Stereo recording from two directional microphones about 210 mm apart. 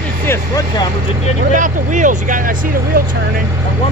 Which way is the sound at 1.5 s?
35° right (ahead or behind).